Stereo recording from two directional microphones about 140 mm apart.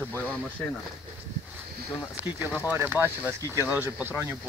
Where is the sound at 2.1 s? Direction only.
10° right (ahead or behind).